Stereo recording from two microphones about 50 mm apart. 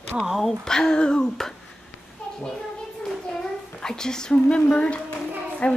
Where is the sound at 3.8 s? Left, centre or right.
Centre.